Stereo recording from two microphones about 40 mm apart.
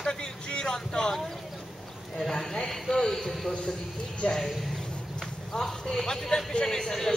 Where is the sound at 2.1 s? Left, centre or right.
Centre.